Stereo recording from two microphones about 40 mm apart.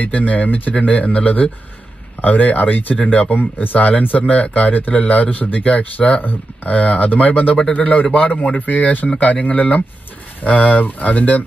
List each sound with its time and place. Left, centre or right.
0.0 s speech: left